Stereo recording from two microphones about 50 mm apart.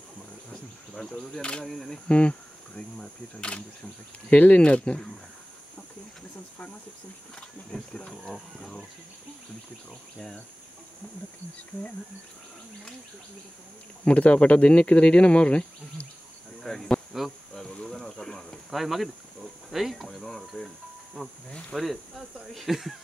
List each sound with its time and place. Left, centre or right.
1.4 s speech: centre
1.7 s speech: centre
2.0 s speech: left
4.3 s speech: left
7.3 s speech: centre
10.1 s speech: centre
14.0 s speech: left
16.6 s speech: centre
17.1 s speech: centre
17.6 s speech: centre
18.7 s speech: centre